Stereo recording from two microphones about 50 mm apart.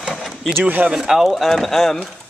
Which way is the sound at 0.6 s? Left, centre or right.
Right.